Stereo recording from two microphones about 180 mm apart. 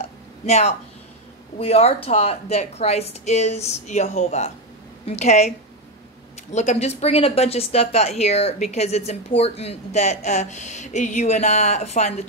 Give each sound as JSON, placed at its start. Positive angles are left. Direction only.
{"t": 0.5, "sound": "speech", "side_deg": 40}
{"t": 6.5, "sound": "speech", "side_deg": 40}